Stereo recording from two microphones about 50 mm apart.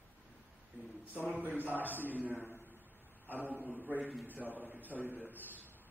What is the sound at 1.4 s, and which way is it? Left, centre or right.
A man's voice, right.